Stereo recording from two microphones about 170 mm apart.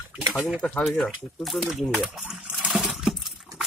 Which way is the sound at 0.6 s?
5° left (ahead or behind).